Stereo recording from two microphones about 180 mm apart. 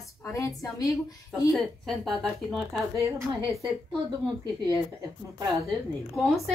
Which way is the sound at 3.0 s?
15° right (ahead or behind).